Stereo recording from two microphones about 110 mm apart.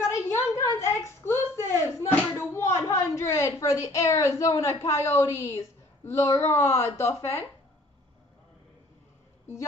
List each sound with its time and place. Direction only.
0.1 s a sound: 25° left (ahead or behind)
1.8 s bouncing: 25° left (ahead or behind)
2.5 s a woman's voice: 25° left (ahead or behind)